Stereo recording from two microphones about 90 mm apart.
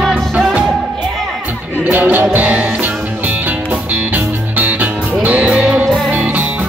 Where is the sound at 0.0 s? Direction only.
15° right (ahead or behind).